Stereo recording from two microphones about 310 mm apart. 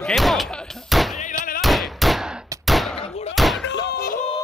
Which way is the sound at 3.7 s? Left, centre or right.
Left.